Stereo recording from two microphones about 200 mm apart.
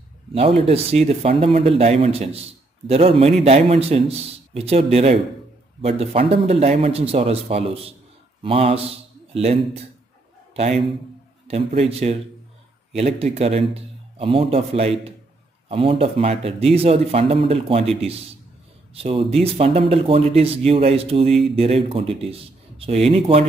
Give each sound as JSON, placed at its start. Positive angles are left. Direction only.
{"t": 0.3, "sound": "a man's voice", "side_deg": -30}
{"t": 18.9, "sound": "speech", "side_deg": -30}
{"t": 21.3, "sound": "speech", "side_deg": 0}
{"t": 21.5, "sound": "speech", "side_deg": -30}